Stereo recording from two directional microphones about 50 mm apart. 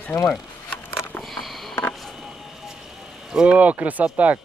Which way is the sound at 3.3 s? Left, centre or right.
Right.